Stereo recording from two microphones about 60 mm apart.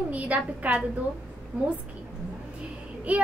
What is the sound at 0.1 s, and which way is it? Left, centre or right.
Speech, right.